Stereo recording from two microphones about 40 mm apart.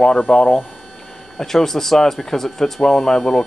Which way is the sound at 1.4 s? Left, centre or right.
Centre.